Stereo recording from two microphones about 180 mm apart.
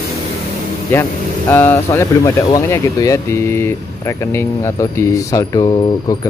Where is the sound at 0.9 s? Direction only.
10° left (ahead or behind).